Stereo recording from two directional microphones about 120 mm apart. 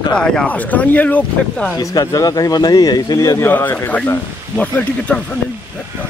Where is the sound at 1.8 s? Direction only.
30° left (ahead or behind).